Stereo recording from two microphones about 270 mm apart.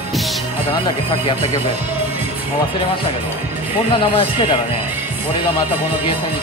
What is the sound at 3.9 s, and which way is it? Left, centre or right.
Speech, centre.